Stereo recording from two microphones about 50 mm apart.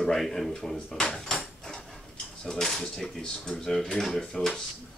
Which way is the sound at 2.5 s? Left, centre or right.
Centre.